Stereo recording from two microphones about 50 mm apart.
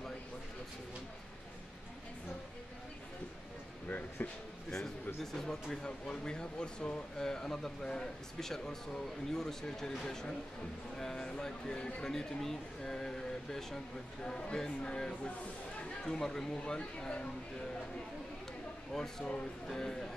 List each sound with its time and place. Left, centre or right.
4.2 s speech: left
4.6 s speech: centre
18.9 s speech: centre